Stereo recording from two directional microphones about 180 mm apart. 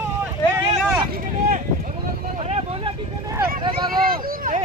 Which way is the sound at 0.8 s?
5° right (ahead or behind).